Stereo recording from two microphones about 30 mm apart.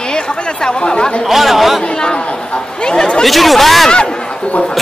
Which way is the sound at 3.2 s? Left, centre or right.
Centre.